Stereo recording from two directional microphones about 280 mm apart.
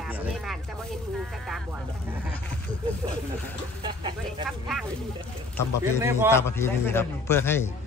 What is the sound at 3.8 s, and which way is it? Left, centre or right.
Speech, centre.